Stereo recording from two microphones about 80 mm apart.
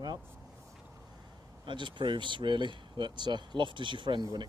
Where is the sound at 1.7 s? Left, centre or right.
Right.